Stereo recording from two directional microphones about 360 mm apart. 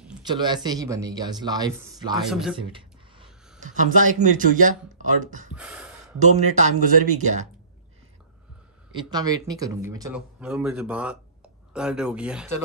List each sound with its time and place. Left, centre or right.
0.0 s speech: centre
2.5 s speech: centre
5.5 s gasp: centre
6.1 s speech: centre
8.9 s speech: centre